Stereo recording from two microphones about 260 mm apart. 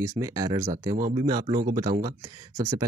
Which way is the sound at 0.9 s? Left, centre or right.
Right.